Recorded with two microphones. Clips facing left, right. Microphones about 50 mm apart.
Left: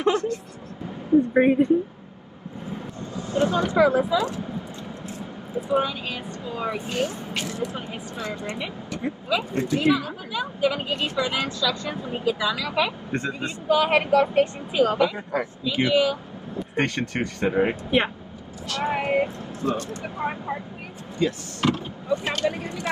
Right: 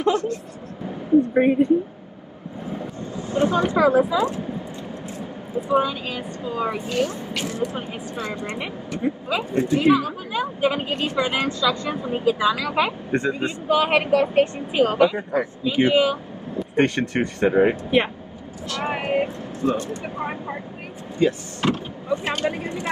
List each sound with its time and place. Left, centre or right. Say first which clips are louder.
1.3 s a woman's voice: even; centre
3.0 s speech: right 1 dB; right
6.8 s speech: right 3 dB; left
7.4 s speech: right 3 dB; right
13.1 s speech: right 5 dB; right